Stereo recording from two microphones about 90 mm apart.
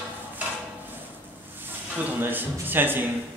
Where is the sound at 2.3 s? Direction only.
20° right (ahead or behind).